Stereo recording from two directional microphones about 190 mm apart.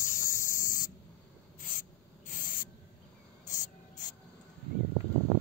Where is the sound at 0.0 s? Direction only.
45° left (ahead or behind).